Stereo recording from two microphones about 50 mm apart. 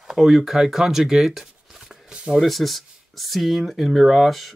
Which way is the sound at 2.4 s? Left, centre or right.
Centre.